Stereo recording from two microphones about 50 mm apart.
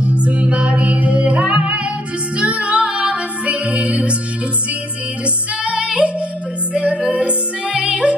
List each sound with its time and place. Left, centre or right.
0.0 s music: right
5.2 s music: right